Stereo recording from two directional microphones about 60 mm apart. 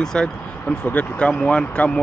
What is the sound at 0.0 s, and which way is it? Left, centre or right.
Speech, centre.